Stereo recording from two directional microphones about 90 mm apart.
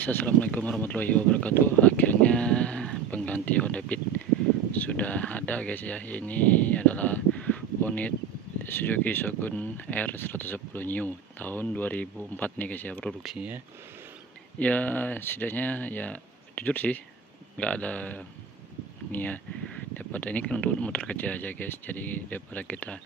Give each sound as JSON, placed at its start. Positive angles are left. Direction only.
{"t": 0.0, "sound": "speech", "side_deg": 15}
{"t": 14.6, "sound": "speech", "side_deg": 15}